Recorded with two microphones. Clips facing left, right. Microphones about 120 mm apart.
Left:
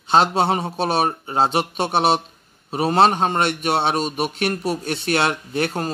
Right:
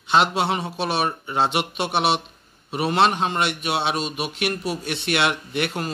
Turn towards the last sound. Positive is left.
turn(degrees=40)  # may be behind; listen again after turning